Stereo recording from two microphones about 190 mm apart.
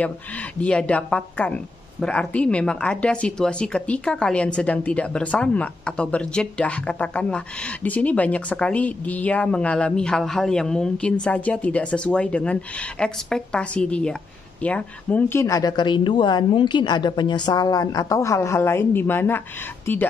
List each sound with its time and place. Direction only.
0.6 s a woman's voice: 5° left (ahead or behind)